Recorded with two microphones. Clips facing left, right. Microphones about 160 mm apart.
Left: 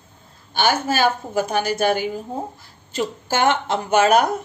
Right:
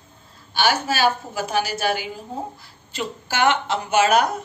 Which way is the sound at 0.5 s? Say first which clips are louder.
Left 2 dB; 50° left (ahead or behind).